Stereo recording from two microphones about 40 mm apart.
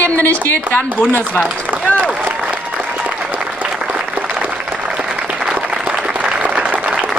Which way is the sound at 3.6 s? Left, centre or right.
Right.